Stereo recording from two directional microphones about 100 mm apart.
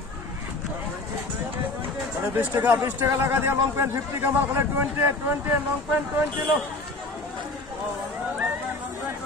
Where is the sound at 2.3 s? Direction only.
20° right (ahead or behind).